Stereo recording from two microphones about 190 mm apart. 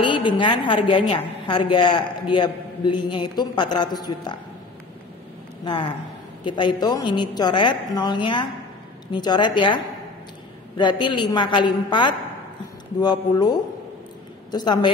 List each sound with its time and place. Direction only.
0.0 s a woman's voice: 25° left (ahead or behind)
5.7 s a woman's voice: 25° left (ahead or behind)
10.8 s a woman's voice: 25° left (ahead or behind)